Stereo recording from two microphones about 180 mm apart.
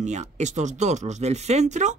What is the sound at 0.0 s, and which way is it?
Speech, 40° right (ahead or behind).